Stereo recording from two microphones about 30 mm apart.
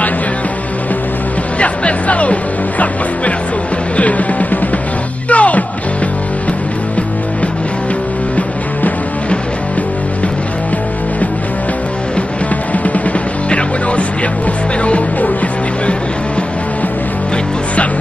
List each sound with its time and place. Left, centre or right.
1.6 s music: left
3.9 s music: left
12.7 s music: left
13.5 s music: left